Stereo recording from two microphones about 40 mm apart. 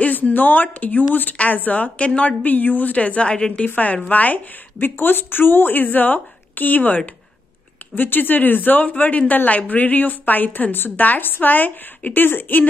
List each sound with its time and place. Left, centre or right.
0.0 s a woman's voice: left
2.4 s a woman's voice: left
3.6 s a woman's voice: left